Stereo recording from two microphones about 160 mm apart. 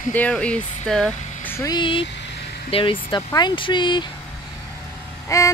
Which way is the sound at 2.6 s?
35° left (ahead or behind).